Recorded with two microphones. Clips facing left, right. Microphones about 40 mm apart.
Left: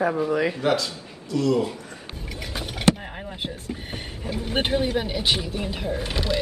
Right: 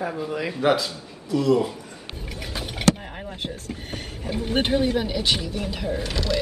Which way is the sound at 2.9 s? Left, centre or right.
Left.